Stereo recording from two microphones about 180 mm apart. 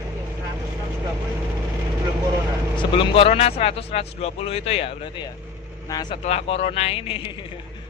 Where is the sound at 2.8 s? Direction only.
30° left (ahead or behind).